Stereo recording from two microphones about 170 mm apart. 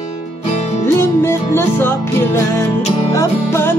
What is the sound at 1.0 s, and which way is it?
Music, 15° left (ahead or behind).